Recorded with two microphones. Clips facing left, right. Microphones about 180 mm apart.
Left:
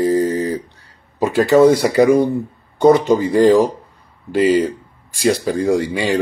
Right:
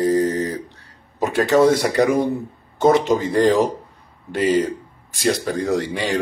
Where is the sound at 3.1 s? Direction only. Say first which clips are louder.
Left 4 dB; centre (ahead or behind).